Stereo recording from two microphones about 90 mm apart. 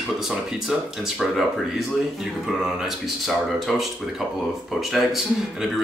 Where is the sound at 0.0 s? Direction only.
5° right (ahead or behind).